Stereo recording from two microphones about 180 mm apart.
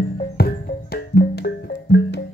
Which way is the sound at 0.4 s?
60° left (ahead or behind).